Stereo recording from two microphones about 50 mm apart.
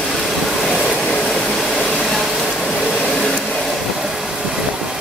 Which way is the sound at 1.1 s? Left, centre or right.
Centre.